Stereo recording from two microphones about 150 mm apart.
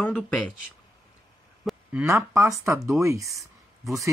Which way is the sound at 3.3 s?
Centre (ahead or behind).